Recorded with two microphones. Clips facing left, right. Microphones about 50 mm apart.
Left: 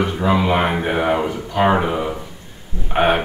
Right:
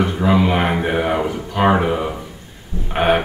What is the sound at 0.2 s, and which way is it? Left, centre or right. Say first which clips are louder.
Speech: even; centre.